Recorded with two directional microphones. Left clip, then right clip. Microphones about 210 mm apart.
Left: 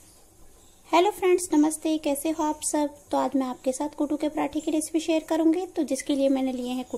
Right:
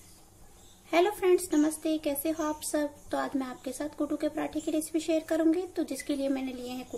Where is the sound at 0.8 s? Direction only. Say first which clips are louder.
Left 4 dB; 25° left (ahead or behind).